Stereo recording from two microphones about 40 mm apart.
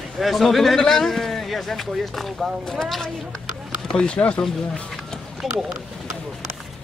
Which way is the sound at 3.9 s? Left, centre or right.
Centre.